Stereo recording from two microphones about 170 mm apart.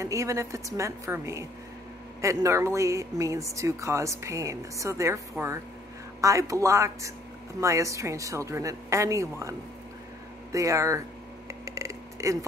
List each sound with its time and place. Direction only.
0.0 s speech: 15° right (ahead or behind)
6.2 s speech: 20° right (ahead or behind)
11.4 s a sound: 15° right (ahead or behind)